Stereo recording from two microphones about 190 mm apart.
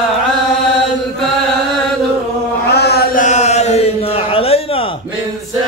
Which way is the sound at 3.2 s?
35° left (ahead or behind).